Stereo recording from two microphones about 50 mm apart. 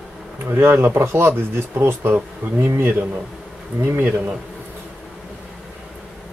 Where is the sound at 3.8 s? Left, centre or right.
Right.